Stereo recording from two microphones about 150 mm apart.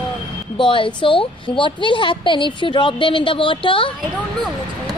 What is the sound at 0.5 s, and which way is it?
A woman's voice, 35° left (ahead or behind).